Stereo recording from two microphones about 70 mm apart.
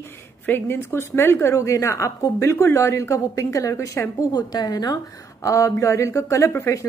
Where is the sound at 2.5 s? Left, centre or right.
Left.